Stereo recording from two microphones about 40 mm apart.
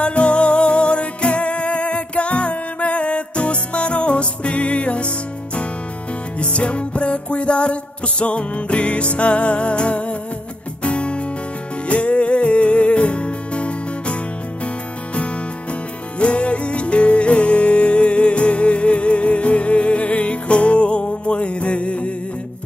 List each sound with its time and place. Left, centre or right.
0.0 s music: left
16.2 s music: left